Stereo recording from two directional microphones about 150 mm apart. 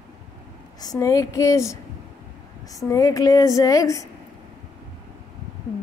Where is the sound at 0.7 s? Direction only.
25° left (ahead or behind).